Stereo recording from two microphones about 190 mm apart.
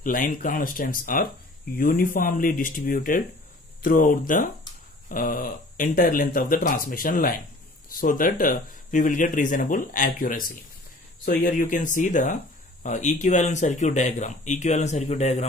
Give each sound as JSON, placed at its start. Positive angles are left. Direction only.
{"t": 0.0, "sound": "speech", "side_deg": 45}